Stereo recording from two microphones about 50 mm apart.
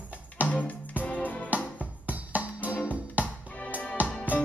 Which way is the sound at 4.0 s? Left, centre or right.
Right.